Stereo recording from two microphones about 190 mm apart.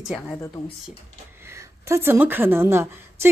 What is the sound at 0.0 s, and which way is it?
Speech, centre (ahead or behind).